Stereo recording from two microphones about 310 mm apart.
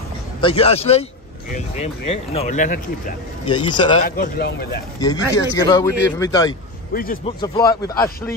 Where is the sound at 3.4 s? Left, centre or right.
Centre.